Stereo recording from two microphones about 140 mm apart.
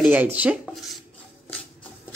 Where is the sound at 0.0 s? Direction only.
10° right (ahead or behind).